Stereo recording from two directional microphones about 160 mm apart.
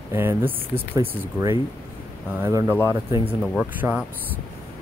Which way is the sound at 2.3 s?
15° right (ahead or behind).